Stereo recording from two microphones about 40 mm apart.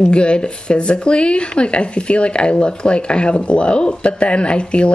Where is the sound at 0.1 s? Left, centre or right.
Left.